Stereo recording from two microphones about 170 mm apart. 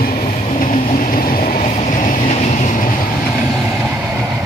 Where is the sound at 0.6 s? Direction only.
55° left (ahead or behind).